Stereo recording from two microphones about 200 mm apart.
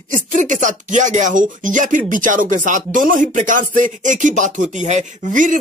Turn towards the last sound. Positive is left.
turn(degrees=-40)  # may be behind; listen again after turning